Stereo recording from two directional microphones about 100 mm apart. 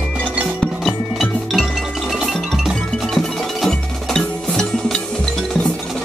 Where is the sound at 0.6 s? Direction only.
Centre (ahead or behind).